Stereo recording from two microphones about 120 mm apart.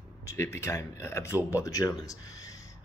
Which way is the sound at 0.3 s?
25° left (ahead or behind).